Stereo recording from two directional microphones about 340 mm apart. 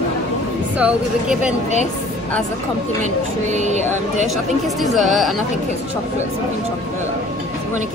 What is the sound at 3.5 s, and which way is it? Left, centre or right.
Speech, centre.